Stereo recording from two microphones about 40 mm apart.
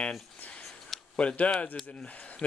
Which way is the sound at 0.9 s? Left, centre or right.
Centre.